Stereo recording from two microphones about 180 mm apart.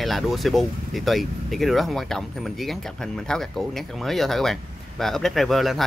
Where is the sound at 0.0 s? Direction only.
Centre (ahead or behind).